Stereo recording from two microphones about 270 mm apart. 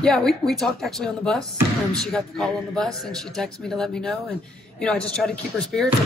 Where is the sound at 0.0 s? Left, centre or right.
Centre.